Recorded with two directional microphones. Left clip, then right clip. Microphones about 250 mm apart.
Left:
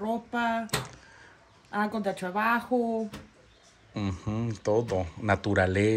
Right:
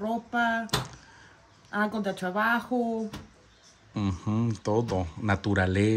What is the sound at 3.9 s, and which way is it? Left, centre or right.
Speech, centre.